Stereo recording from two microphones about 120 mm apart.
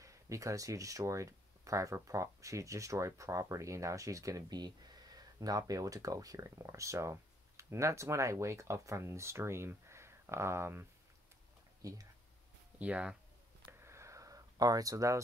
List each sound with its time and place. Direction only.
0.0 s speech: 25° right (ahead or behind)
12.7 s speech: 10° right (ahead or behind)
13.7 s a sound: 20° right (ahead or behind)